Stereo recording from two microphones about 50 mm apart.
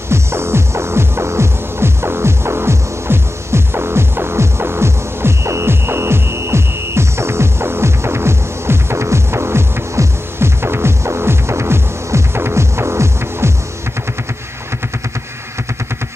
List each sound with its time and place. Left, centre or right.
0.1 s music: right